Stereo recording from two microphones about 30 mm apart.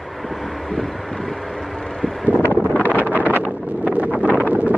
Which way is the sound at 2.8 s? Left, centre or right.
Left.